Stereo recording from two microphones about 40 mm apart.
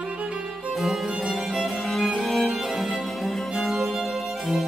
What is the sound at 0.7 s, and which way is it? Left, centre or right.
Music, centre.